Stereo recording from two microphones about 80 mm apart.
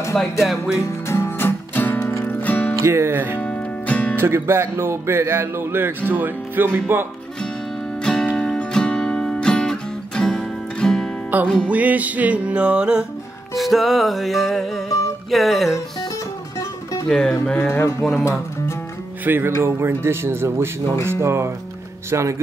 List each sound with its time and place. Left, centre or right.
0.1 s music: centre
0.7 s music: left
2.8 s speech: right
3.3 s music: centre
4.2 s speech: right
8.0 s music: centre
11.7 s music: centre
13.6 s music: centre
17.1 s music: centre
17.6 s music: left
18.1 s speech: left
19.2 s speech: right